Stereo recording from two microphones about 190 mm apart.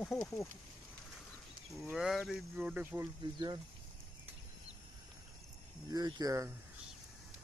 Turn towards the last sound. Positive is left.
turn(degrees=-20)  # may be behind; listen again after turning